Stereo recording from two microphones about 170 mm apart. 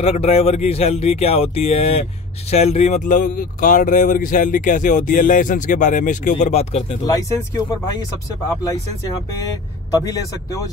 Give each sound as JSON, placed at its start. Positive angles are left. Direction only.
{"t": 0.0, "sound": "speech", "side_deg": 35}
{"t": 6.4, "sound": "speech", "side_deg": 40}
{"t": 7.1, "sound": "speech", "side_deg": 20}
{"t": 9.4, "sound": "speech", "side_deg": 20}